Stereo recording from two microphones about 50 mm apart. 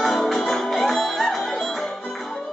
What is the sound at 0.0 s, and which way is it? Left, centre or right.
Music, centre.